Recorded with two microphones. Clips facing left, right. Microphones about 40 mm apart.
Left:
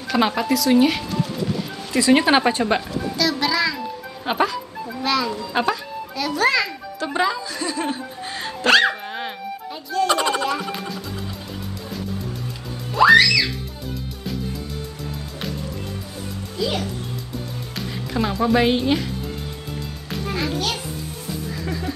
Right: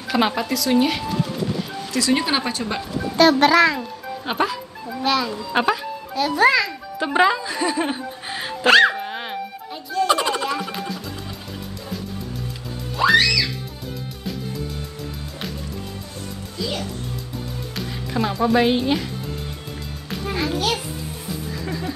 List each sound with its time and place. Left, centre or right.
0.1 s speech: centre
1.9 s speech: left
3.2 s a child's voice: right
4.3 s a child's voice: centre
7.0 s music: right; by 11.0 s centre
12.9 s music: left
16.5 s a child's voice: centre
17.7 s speech: centre
20.1 s music: centre